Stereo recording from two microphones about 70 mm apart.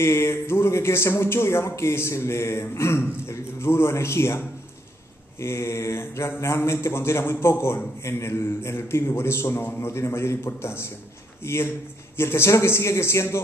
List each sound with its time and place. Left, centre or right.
0.0 s speech: left